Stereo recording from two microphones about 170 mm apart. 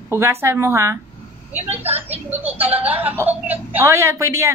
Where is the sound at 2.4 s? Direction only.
10° right (ahead or behind).